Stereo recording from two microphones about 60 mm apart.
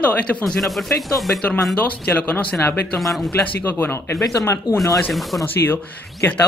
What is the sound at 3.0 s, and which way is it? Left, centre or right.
Speech, centre.